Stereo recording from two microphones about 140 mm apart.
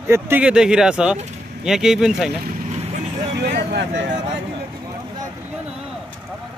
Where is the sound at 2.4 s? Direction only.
90° right.